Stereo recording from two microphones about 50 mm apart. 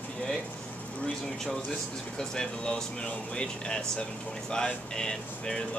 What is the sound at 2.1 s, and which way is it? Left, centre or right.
Speech, centre.